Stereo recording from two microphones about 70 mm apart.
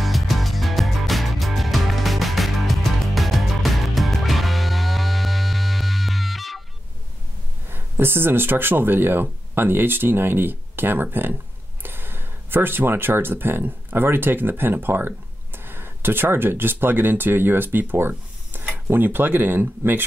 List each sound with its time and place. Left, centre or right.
0.0 s music: centre
7.7 s speech: right